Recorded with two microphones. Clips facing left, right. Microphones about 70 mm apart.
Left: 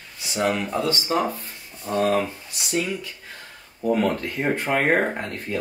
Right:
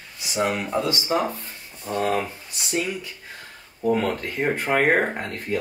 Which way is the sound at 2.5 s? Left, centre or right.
Right.